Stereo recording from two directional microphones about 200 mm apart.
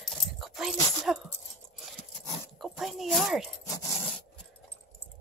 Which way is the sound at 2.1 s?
Centre (ahead or behind).